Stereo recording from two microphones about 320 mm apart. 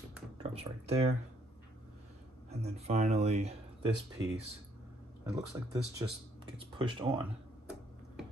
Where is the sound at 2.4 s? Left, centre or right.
Centre.